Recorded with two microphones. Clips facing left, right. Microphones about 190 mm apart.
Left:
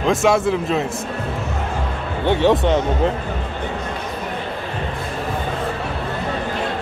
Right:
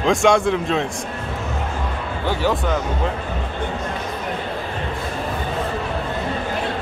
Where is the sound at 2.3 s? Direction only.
25° left (ahead or behind).